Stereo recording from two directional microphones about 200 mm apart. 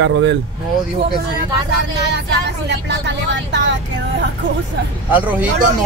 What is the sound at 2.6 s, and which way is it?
Speech, 60° right (ahead or behind).